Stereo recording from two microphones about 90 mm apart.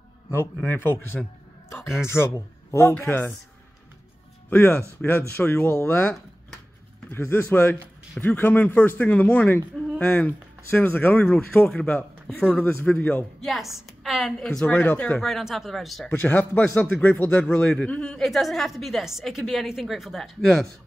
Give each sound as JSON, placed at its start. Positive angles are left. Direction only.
{"t": 0.3, "sound": "speech", "side_deg": 25}
{"t": 2.9, "sound": "speech", "side_deg": 20}
{"t": 4.5, "sound": "speech", "side_deg": 20}
{"t": 13.4, "sound": "a man's voice", "side_deg": 0}
{"t": 15.2, "sound": "a man's voice", "side_deg": 0}
{"t": 16.1, "sound": "a man's voice", "side_deg": 20}